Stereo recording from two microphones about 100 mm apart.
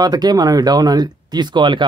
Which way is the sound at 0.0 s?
40° right (ahead or behind).